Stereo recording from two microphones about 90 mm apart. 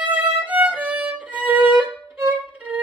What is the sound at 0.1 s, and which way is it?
Violin, 15° right (ahead or behind).